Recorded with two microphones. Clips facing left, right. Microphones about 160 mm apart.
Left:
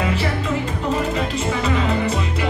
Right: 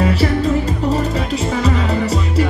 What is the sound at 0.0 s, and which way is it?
Music, 40° right (ahead or behind).